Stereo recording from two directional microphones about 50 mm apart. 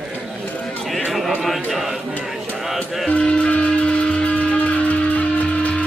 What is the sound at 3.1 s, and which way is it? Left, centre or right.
Music, left.